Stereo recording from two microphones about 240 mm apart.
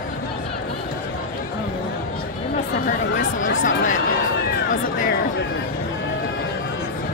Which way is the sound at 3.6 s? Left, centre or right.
Left.